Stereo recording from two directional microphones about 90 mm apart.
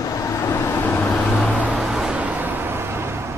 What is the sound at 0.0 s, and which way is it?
Vehicle, 35° left (ahead or behind).